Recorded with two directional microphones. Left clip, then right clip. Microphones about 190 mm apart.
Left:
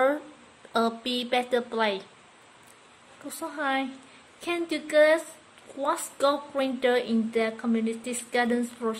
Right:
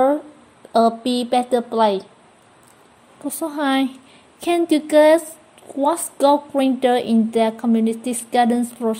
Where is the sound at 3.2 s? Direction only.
30° right (ahead or behind).